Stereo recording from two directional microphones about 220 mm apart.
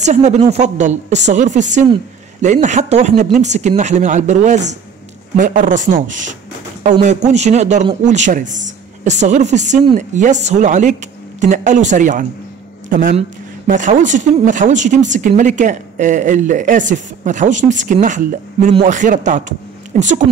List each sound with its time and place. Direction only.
0.0 s speech: 30° right (ahead or behind)